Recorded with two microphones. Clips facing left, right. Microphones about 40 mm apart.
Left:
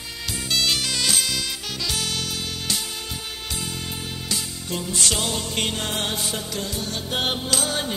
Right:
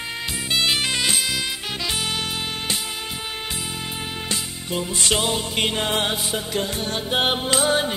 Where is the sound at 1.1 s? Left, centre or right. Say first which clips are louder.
Right 1 dB; centre.